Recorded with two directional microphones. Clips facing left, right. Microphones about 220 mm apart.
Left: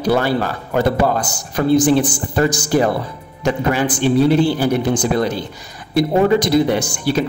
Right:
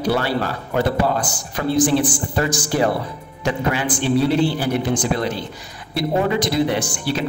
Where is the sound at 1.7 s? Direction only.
40° left (ahead or behind).